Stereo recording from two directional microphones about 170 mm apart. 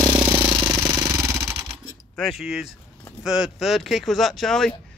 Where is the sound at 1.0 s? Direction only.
20° right (ahead or behind).